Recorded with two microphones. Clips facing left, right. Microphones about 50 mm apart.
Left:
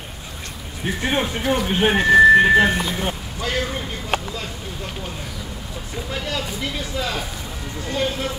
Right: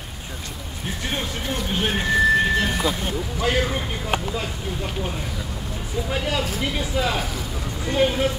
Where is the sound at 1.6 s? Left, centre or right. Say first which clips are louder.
Left 6 dB; left.